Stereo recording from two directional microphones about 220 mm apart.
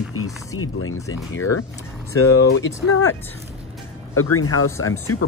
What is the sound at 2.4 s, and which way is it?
Speech, 55° left (ahead or behind).